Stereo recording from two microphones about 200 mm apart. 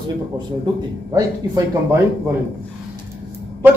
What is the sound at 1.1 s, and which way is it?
Speech, 15° right (ahead or behind).